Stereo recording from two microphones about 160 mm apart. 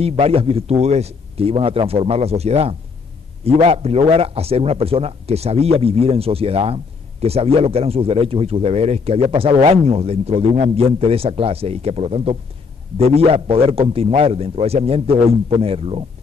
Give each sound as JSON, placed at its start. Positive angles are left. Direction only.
{"t": 0.0, "sound": "speech", "side_deg": -40}